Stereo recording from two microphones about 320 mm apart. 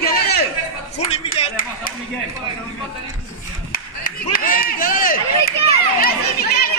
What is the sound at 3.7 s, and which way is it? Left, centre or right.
Chop, left.